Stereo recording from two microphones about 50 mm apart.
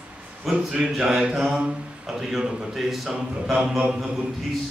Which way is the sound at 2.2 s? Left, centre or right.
Centre.